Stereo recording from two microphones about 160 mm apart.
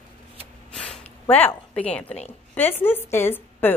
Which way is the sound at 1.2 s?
15° left (ahead or behind).